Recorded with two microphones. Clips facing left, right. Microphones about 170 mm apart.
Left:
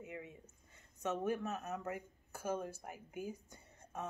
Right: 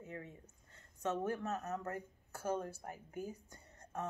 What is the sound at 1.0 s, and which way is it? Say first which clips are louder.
Speech: even; 10° left (ahead or behind).